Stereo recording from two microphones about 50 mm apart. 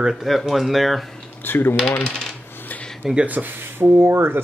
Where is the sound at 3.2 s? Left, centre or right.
Right.